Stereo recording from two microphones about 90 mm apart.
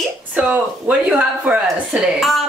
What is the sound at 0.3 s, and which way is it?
Speech, 15° right (ahead or behind).